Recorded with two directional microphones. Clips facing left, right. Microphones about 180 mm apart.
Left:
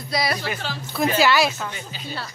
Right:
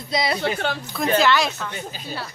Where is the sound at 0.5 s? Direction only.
55° right (ahead or behind).